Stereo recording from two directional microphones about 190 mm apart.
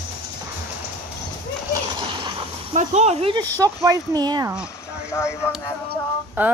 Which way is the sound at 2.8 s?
35° right (ahead or behind).